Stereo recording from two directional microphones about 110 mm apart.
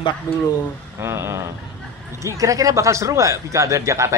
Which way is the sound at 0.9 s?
25° right (ahead or behind).